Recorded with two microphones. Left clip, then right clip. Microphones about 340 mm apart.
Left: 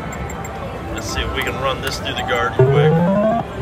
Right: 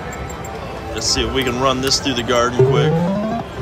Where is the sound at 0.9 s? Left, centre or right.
Centre.